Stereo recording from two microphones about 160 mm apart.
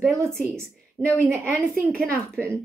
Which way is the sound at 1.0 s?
15° right (ahead or behind).